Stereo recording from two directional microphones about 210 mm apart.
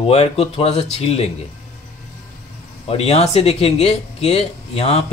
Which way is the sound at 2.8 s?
30° left (ahead or behind).